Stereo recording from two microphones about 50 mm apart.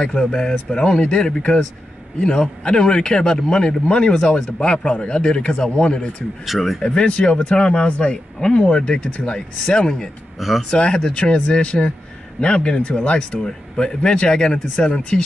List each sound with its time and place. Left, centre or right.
0.0 s a man's voice: centre
6.4 s speech: centre
6.8 s speech: centre